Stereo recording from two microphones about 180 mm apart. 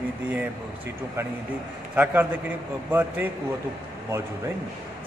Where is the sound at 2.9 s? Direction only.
10° right (ahead or behind).